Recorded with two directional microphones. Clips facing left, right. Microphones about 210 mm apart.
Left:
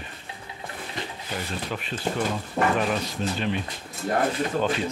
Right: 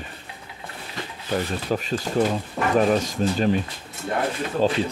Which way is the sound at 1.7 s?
40° right (ahead or behind).